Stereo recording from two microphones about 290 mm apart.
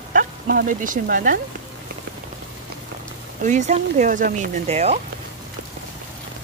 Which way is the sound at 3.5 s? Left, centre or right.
Right.